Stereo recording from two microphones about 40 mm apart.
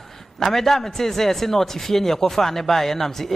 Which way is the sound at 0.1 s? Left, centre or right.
Centre.